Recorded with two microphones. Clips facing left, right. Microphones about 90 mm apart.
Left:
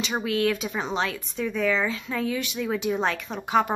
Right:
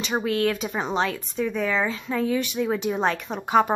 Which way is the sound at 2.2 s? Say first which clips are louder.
Right 5 dB; 35° right (ahead or behind).